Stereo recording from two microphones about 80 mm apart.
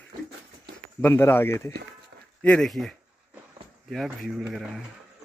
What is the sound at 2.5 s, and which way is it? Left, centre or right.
Speech, centre.